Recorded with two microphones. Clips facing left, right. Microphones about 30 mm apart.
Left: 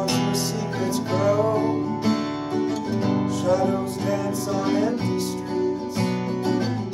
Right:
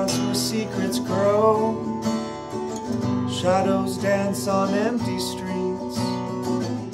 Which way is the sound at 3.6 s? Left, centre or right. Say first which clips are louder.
Right 2 dB; right.